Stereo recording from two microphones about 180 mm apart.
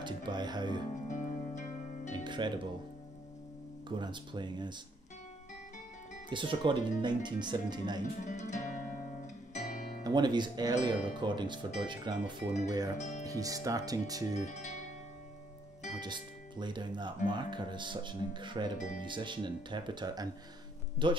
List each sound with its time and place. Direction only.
0.0 s speech: 25° right (ahead or behind)
1.0 s music: 40° left (ahead or behind)
2.1 s music: 25° right (ahead or behind)
3.9 s speech: 25° right (ahead or behind)
6.3 s speech: 25° right (ahead or behind)
8.0 s speech: 40° left (ahead or behind)
9.5 s music: 40° left (ahead or behind)
10.0 s speech: 25° right (ahead or behind)
12.9 s speech: 40° left (ahead or behind)
13.2 s speech: 20° right (ahead or behind)
14.3 s speech: 40° left (ahead or behind)
16.0 s speech: 25° right (ahead or behind)